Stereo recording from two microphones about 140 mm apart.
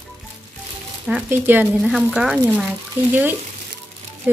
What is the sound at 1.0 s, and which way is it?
Speech, 10° right (ahead or behind).